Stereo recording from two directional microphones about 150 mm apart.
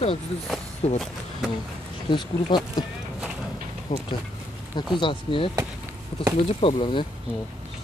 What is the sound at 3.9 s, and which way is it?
Speech, 55° left (ahead or behind).